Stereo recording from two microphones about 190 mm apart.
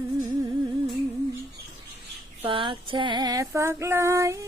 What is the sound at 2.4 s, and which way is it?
Female singing, 30° right (ahead or behind).